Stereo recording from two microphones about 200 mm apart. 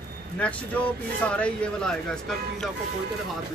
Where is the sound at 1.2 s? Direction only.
5° left (ahead or behind).